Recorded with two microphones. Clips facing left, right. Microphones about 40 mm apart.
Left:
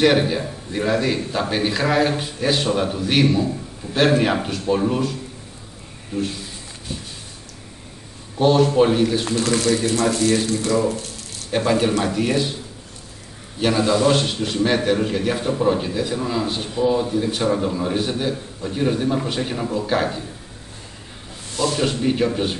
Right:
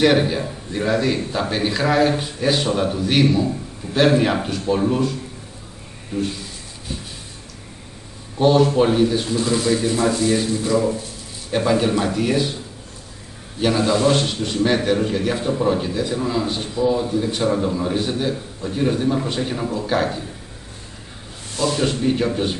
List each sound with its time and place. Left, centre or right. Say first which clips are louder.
0.0 s a man's voice: even; centre
6.1 s a man's voice: right 1 dB; centre
8.4 s a man's voice: even; centre
9.2 s speech: even; left
9.7 s speech: right 1 dB; centre
11.5 s a man's voice: even; centre
13.6 s a man's voice: even; centre
21.7 s a man's voice: even; centre